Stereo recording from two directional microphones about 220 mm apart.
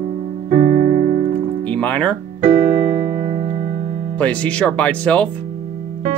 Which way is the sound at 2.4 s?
30° right (ahead or behind).